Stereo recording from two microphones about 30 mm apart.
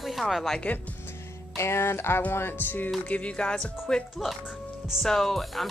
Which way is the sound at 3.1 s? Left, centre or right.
Left.